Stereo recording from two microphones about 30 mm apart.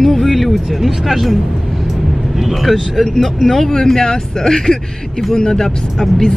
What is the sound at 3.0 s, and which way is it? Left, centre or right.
Speech, centre.